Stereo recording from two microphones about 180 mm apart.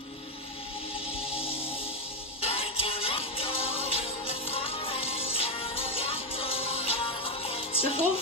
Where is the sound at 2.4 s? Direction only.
30° left (ahead or behind).